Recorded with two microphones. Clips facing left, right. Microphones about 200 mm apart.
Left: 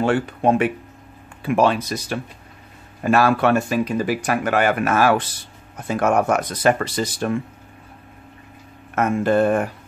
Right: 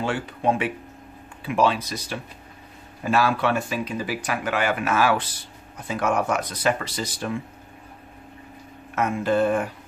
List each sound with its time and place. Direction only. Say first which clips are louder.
0.0 s speech: left 6 dB; 50° left (ahead or behind)
8.9 s speech: left 4 dB; 50° left (ahead or behind)